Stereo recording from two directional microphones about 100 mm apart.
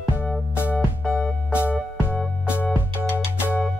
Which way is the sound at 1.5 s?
15° right (ahead or behind).